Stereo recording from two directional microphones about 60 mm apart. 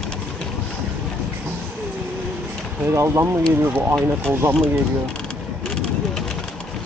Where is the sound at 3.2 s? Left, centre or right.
Right.